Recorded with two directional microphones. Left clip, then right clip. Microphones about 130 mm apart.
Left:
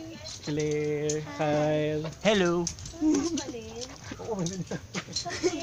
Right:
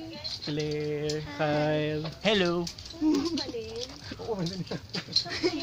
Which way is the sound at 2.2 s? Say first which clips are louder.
Left 1 dB; 20° left (ahead or behind).